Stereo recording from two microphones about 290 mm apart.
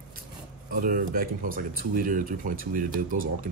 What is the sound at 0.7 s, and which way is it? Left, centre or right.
Speech, right.